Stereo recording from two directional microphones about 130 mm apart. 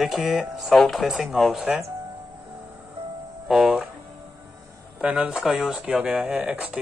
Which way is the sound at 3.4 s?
5° right (ahead or behind).